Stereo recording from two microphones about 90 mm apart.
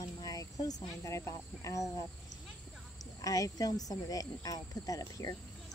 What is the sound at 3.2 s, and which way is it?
Speech, 40° left (ahead or behind).